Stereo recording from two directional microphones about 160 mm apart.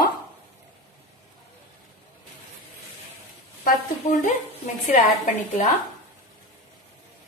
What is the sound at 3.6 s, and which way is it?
Speech, 50° left (ahead or behind).